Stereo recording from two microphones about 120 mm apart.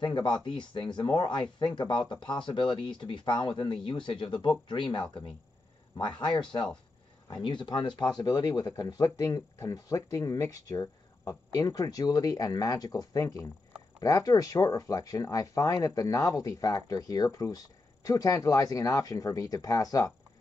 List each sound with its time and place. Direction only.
0.0 s speech: 40° left (ahead or behind)
5.9 s speech: 40° left (ahead or behind)
7.4 s speech: 40° left (ahead or behind)